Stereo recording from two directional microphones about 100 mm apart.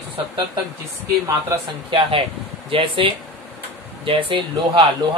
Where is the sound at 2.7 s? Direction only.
65° right (ahead or behind).